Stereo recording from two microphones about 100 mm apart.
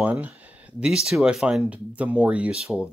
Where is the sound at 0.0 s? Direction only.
15° right (ahead or behind).